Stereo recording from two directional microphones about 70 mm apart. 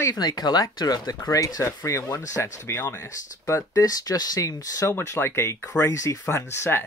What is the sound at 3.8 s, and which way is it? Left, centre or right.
Speech, left.